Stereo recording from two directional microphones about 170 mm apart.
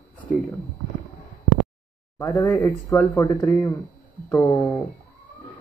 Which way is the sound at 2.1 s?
15° left (ahead or behind).